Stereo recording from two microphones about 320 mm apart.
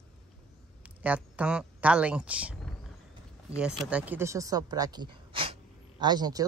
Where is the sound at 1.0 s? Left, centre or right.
Centre.